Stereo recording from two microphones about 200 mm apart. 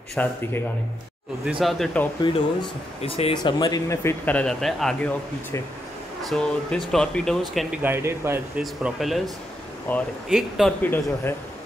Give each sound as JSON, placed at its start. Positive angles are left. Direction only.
{"t": 0.1, "sound": "speech", "side_deg": 10}
{"t": 1.4, "sound": "speech", "side_deg": 0}
{"t": 2.3, "sound": "speech", "side_deg": 25}
{"t": 3.4, "sound": "speech", "side_deg": 20}
{"t": 6.2, "sound": "speech", "side_deg": 0}
{"t": 7.8, "sound": "speech", "side_deg": -10}